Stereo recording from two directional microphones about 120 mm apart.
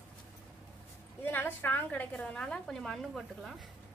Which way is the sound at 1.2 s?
20° left (ahead or behind).